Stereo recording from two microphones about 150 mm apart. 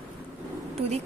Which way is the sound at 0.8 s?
45° right (ahead or behind).